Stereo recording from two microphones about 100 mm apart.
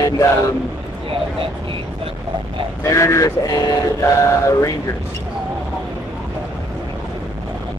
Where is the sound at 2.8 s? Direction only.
30° left (ahead or behind).